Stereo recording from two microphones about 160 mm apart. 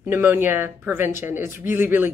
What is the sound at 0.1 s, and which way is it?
A woman's voice, 10° right (ahead or behind).